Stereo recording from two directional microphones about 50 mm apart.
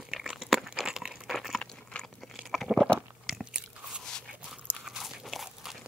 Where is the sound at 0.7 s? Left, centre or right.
Centre.